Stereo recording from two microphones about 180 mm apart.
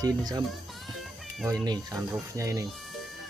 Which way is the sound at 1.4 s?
20° right (ahead or behind).